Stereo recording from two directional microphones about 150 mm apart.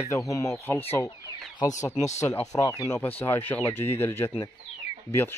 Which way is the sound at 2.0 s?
50° left (ahead or behind).